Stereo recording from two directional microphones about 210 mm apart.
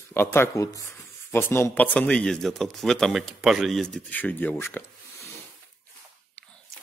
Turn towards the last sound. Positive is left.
turn(degrees=10)  # may be behind; listen again after turning